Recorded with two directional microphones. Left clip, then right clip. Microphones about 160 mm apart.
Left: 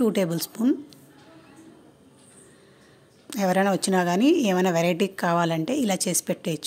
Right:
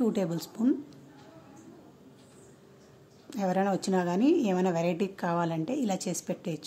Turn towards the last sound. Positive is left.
turn(degrees=20)  # may be behind; listen again after turning